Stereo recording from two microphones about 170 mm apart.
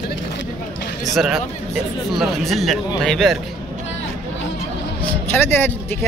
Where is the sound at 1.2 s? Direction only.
Centre (ahead or behind).